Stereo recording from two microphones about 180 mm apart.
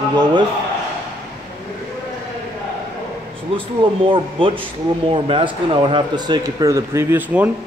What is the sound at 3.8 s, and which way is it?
A man's voice, 30° right (ahead or behind).